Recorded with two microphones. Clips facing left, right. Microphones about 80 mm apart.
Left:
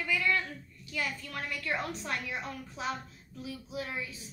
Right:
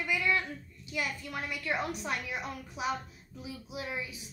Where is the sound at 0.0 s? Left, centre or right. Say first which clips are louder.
Even; centre.